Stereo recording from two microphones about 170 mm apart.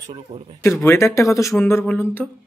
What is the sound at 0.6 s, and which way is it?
Speech, 15° left (ahead or behind).